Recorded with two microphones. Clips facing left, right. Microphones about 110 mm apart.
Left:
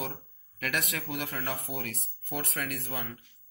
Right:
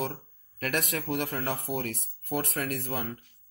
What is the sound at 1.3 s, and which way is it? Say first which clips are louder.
Speech: right 3 dB; 25° right (ahead or behind).